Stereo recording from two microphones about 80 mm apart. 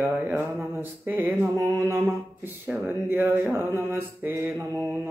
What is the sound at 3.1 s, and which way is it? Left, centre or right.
Mantra, right.